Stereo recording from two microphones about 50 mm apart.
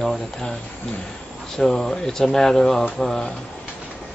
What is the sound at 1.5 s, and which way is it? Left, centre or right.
Speech, centre.